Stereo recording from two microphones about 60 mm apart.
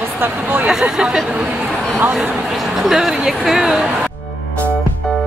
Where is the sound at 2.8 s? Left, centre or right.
Centre.